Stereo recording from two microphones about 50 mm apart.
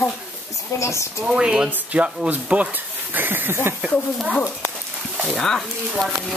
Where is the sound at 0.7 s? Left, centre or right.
Left.